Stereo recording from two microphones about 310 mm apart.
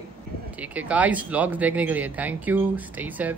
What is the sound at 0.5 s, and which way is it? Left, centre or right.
Speech, centre.